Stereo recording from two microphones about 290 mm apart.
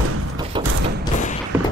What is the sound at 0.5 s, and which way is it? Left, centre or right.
Mechanisms, centre.